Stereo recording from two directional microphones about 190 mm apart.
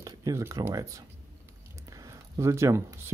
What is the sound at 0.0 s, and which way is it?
Speech, 20° right (ahead or behind).